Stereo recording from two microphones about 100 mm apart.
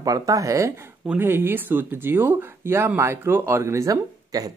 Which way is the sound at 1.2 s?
20° right (ahead or behind).